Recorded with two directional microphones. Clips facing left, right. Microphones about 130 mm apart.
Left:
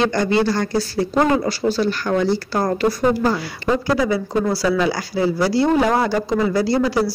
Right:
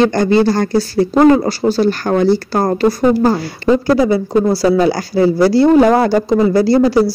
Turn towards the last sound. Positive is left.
turn(degrees=-40)  # may be behind; listen again after turning